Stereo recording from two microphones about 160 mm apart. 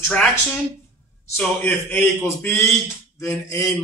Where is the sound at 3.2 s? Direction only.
20° left (ahead or behind).